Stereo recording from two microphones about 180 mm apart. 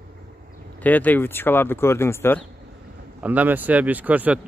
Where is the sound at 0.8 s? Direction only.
10° left (ahead or behind).